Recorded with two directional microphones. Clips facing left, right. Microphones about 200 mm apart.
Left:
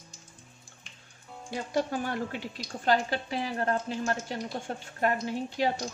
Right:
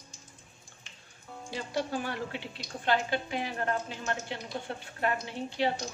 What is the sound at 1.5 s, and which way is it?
A woman's voice, 50° left (ahead or behind).